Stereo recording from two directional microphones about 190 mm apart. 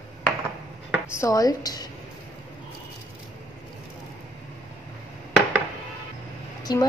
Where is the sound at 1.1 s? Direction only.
15° left (ahead or behind).